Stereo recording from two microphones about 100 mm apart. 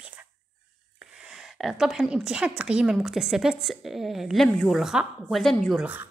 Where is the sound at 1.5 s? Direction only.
5° right (ahead or behind).